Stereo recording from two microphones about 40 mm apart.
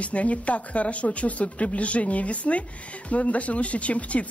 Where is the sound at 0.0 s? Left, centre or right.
Left.